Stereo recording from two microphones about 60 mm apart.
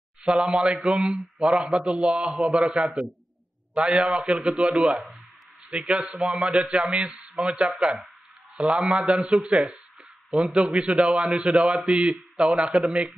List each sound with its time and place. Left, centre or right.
0.2 s a man's voice: centre
0.7 s a man's voice: centre
2.6 s a man's voice: centre
4.2 s a man's voice: centre
5.8 s a man's voice: centre
7.8 s speech: right
9.1 s speech: centre
9.5 s a man's voice: centre